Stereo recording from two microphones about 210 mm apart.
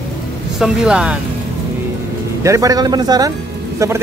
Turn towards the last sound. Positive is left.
turn(degrees=-15)  # may be behind; listen again after turning